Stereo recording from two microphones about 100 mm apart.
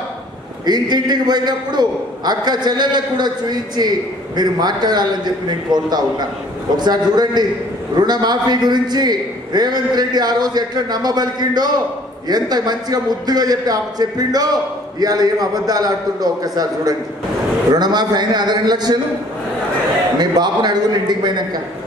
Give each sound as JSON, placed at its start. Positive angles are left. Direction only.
{"t": 0.7, "sound": "a man's voice", "side_deg": -45}
{"t": 20.2, "sound": "a man's voice", "side_deg": -45}